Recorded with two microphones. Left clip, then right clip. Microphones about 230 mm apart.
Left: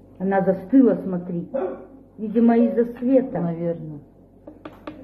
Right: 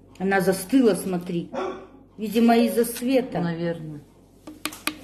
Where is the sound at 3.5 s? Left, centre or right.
Right.